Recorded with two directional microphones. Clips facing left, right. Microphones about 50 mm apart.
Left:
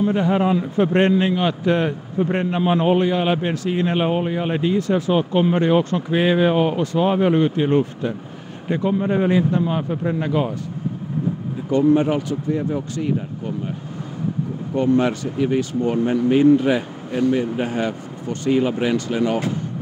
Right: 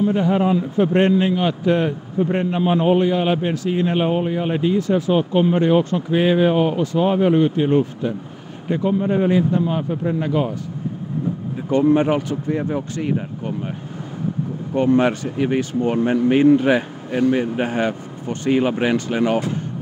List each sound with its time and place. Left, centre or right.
0.1 s a man's voice: left
4.8 s speech: left
11.7 s speech: right
14.8 s speech: right